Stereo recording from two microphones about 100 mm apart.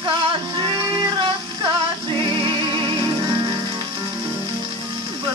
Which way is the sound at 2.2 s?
50° right (ahead or behind).